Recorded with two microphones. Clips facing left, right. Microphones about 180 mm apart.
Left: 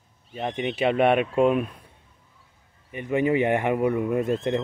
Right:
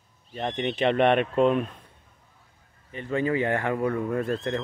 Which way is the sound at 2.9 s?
15° left (ahead or behind).